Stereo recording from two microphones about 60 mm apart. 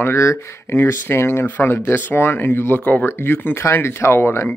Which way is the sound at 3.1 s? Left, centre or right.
Left.